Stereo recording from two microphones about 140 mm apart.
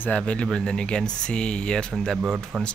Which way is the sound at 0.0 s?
10° left (ahead or behind).